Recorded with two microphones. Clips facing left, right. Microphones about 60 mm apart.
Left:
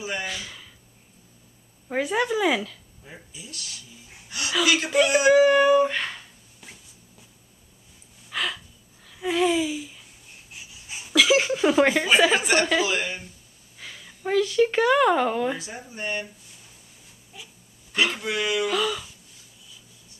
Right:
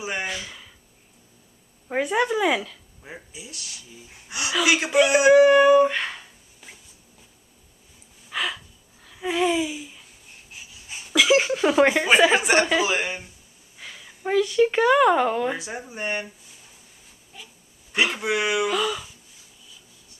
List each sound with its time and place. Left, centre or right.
0.0 s speech: right
0.3 s speech: centre
1.9 s speech: centre
3.1 s speech: right
4.3 s gasp: right
4.6 s speech: centre
8.3 s gasp: centre
10.5 s a sound: centre
12.2 s speech: centre
13.7 s a woman's voice: centre
15.5 s speech: centre
17.3 s wheeze: centre
17.9 s speech: centre
18.7 s speech: centre